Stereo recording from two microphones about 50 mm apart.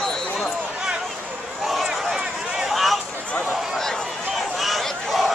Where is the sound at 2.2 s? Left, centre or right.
Centre.